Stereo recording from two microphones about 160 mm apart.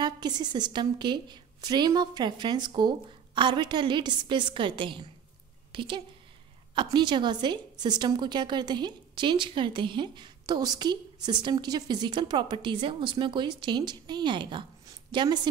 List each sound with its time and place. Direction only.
0.0 s a woman's voice: 25° right (ahead or behind)